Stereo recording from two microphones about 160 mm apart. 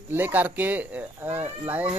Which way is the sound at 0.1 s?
10° right (ahead or behind).